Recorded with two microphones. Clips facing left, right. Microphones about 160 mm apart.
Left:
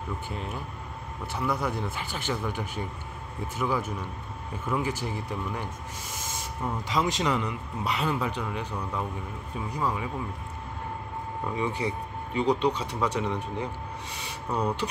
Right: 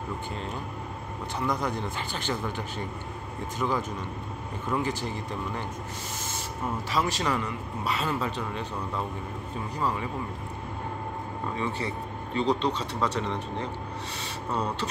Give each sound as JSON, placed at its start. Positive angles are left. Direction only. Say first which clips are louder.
{"t": 1.4, "sound": "a man's voice", "louder": "even", "side_deg": 10}
{"t": 6.9, "sound": "a man's voice", "louder": "left 1 dB", "side_deg": 20}
{"t": 11.5, "sound": "a man's voice", "louder": "left 2 dB", "side_deg": 15}